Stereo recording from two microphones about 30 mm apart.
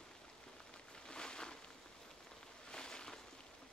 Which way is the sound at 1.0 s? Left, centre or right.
Left.